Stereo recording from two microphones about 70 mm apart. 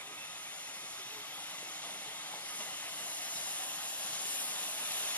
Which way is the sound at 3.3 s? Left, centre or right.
Left.